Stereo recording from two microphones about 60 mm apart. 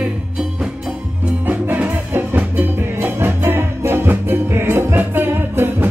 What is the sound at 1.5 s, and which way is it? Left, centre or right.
Music, right.